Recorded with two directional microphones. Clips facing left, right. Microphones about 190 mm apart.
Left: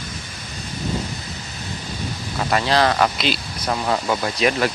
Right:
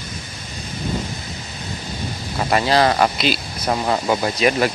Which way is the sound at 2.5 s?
10° right (ahead or behind).